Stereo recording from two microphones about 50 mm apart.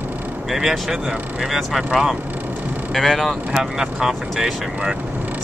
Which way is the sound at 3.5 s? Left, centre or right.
Centre.